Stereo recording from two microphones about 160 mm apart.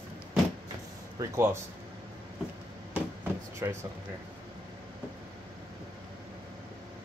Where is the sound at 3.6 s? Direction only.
15° right (ahead or behind).